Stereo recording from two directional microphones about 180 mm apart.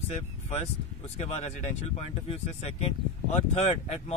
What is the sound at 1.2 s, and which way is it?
Speech, 35° left (ahead or behind).